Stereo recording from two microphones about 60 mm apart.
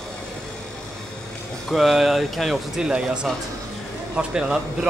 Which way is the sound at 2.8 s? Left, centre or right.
Centre.